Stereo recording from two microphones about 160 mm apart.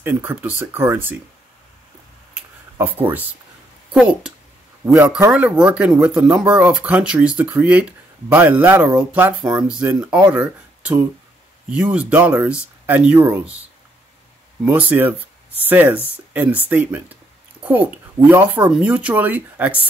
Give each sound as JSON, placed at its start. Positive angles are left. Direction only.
{"t": 0.0, "sound": "speech", "side_deg": -10}
{"t": 2.3, "sound": "a sound", "side_deg": -10}
{"t": 3.9, "sound": "speech", "side_deg": -5}
{"t": 4.8, "sound": "a man's voice", "side_deg": -20}
{"t": 5.3, "sound": "speech", "side_deg": -5}
{"t": 14.6, "sound": "speech", "side_deg": -10}
{"t": 18.3, "sound": "speech", "side_deg": -10}